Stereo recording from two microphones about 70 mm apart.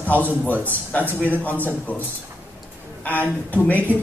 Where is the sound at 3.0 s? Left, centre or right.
Left.